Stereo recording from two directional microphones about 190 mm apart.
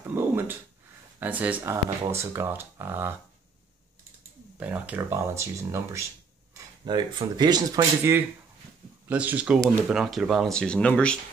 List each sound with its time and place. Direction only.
0.0 s a sound: 10° right (ahead or behind)
1.2 s speech: 10° right (ahead or behind)
4.6 s speech: 10° right (ahead or behind)